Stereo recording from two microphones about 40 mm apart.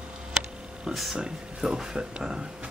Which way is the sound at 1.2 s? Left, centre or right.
Centre.